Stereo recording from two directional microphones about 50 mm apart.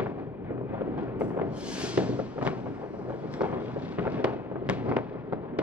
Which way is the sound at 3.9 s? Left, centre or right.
Right.